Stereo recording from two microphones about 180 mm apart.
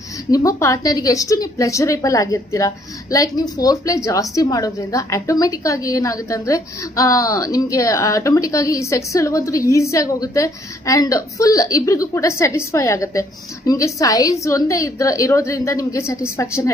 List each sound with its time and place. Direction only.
0.3 s a woman's voice: 20° left (ahead or behind)